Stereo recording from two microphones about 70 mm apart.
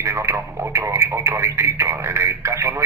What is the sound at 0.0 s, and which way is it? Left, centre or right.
Radio, right.